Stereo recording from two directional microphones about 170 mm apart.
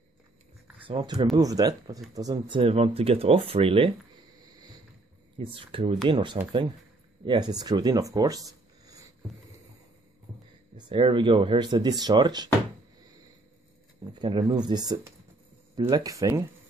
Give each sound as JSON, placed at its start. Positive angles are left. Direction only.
{"t": 0.8, "sound": "speech", "side_deg": -30}
{"t": 5.4, "sound": "speech", "side_deg": -30}
{"t": 10.8, "sound": "speech", "side_deg": -30}
{"t": 14.1, "sound": "speech", "side_deg": -30}